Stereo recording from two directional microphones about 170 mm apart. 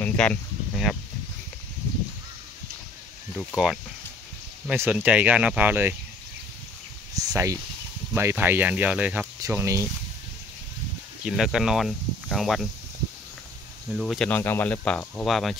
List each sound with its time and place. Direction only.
0.0 s a sound: 5° left (ahead or behind)
3.5 s speech: 5° right (ahead or behind)
7.2 s speech: 20° right (ahead or behind)
11.2 s speech: centre (ahead or behind)
13.9 s speech: centre (ahead or behind)